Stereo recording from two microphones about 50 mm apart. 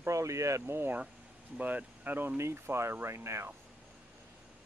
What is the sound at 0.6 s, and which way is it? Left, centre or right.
Speech, right.